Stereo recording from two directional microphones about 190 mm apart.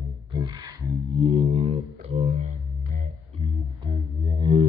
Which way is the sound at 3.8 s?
25° right (ahead or behind).